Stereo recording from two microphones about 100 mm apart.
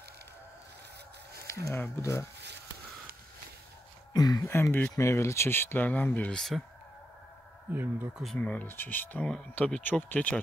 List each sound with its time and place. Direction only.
1.5 s speech: 30° left (ahead or behind)
4.1 s a sound: 40° left (ahead or behind)
4.5 s speech: 25° left (ahead or behind)
7.7 s speech: 20° right (ahead or behind)
8.1 s speech: centre (ahead or behind)
8.4 s speech: 15° left (ahead or behind)